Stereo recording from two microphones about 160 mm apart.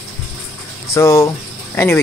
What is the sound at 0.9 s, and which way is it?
Speech, 15° left (ahead or behind).